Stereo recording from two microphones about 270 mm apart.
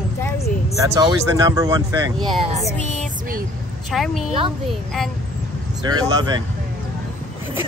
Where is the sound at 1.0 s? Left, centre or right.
Centre.